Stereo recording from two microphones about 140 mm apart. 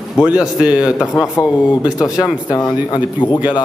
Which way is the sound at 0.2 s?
5° right (ahead or behind).